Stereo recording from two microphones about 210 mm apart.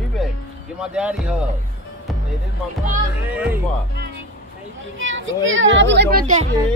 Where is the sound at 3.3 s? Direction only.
10° right (ahead or behind).